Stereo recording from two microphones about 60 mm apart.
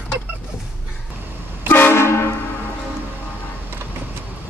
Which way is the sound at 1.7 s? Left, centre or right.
Left.